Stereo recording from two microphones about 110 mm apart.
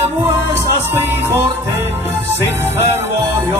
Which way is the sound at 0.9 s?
20° right (ahead or behind).